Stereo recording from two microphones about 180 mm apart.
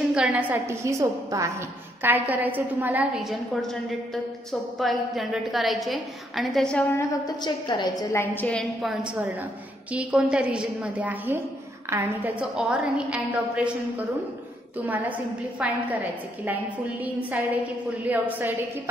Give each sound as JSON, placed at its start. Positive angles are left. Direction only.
{"t": 0.1, "sound": "a woman's voice", "side_deg": -5}
{"t": 7.4, "sound": "a woman's voice", "side_deg": 25}
{"t": 9.9, "sound": "a woman's voice", "side_deg": -5}
{"t": 14.9, "sound": "a woman's voice", "side_deg": -10}
{"t": 17.0, "sound": "a woman's voice", "side_deg": -10}